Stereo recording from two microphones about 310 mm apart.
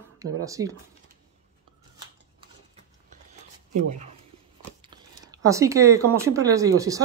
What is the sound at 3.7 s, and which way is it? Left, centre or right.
Speech, right.